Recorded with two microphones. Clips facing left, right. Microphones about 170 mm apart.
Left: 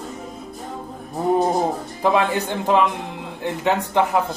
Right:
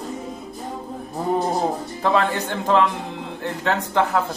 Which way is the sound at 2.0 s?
15° left (ahead or behind).